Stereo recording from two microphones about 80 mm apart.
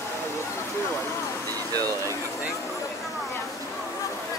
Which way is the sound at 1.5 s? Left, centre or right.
Right.